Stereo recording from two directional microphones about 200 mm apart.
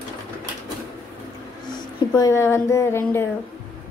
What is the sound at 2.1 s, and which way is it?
Speech, 15° left (ahead or behind).